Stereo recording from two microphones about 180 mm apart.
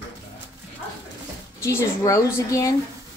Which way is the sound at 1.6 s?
15° left (ahead or behind).